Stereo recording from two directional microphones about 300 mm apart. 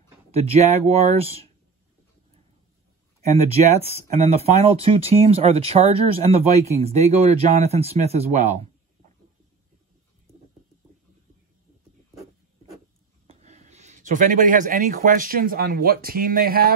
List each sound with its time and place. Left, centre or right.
0.3 s speech: right
3.3 s speech: right
13.3 s speech: right